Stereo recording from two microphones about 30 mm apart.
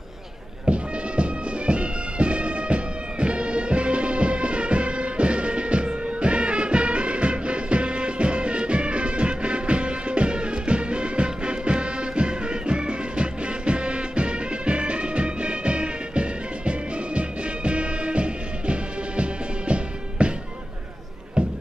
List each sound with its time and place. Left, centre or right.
0.7 s music: right
21.4 s music: right